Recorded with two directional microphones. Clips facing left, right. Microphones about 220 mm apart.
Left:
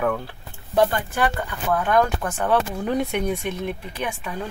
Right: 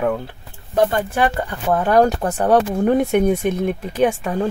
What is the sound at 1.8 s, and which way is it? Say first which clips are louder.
Speech: right 6 dB; 35° right (ahead or behind).